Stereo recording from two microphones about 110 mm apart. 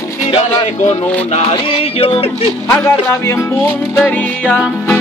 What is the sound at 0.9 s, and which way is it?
Speech, 90° left.